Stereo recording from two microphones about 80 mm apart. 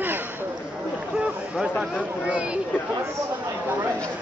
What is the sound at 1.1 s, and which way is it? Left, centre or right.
Speech, centre.